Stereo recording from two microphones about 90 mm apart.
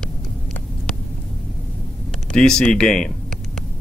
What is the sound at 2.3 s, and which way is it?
Speech, 5° left (ahead or behind).